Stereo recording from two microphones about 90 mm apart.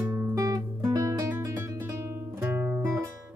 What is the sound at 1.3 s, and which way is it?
Guitar, 30° right (ahead or behind).